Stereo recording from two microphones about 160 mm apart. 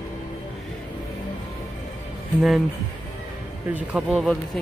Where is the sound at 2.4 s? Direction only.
5° right (ahead or behind).